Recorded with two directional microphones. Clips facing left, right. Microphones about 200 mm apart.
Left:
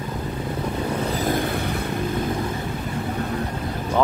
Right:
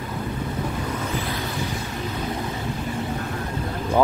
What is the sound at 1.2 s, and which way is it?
Vehicle, 50° left (ahead or behind).